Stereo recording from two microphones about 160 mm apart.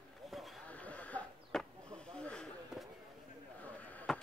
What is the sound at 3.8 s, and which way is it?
Chop, 10° left (ahead or behind).